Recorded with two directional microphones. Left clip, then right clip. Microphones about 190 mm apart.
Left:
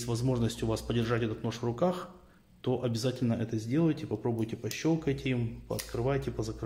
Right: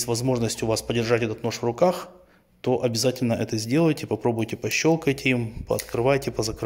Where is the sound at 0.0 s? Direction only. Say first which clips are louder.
Right 8 dB; 35° right (ahead or behind).